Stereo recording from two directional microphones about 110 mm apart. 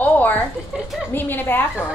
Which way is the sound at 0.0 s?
15° left (ahead or behind).